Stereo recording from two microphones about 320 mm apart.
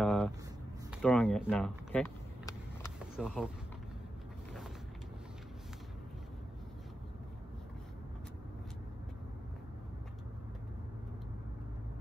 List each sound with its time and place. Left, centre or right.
0.0 s a sound: centre
1.0 s vehicle: centre
3.2 s speech: centre